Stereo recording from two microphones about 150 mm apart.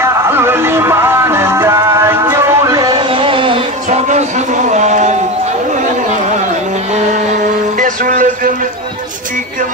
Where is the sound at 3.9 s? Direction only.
50° right (ahead or behind).